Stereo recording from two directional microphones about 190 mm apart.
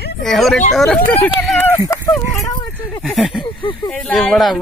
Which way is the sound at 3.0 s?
Centre (ahead or behind).